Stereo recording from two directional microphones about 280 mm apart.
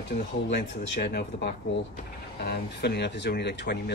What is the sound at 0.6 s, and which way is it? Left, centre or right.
Speech, left.